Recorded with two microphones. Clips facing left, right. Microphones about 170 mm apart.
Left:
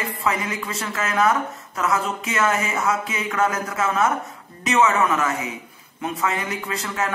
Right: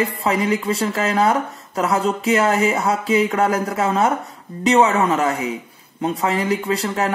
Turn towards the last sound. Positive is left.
turn(degrees=-35)  # may be behind; listen again after turning